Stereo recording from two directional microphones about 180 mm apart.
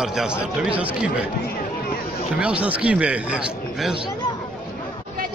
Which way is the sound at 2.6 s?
5° right (ahead or behind).